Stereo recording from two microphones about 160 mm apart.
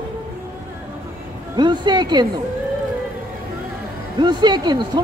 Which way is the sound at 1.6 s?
30° right (ahead or behind).